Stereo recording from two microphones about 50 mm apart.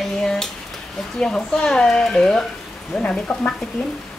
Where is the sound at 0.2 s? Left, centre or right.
Centre.